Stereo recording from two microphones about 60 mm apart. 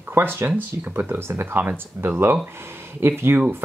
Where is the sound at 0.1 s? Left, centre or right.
Right.